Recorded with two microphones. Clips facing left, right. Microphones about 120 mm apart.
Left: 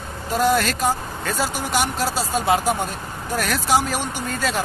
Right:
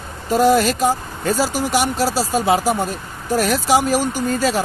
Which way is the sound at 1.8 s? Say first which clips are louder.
Right 4 dB; 40° right (ahead or behind).